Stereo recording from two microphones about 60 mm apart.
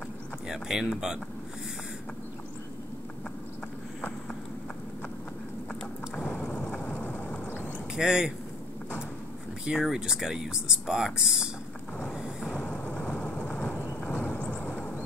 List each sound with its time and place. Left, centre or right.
0.5 s speech: centre
6.5 s vehicle: left
7.4 s a sound: left
7.9 s speech: centre
9.7 s speech: centre
12.2 s a sound: centre
12.6 s vehicle: left
13.5 s horse: left
14.6 s vehicle: left